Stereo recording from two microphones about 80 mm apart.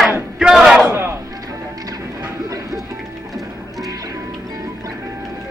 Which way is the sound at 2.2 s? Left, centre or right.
Right.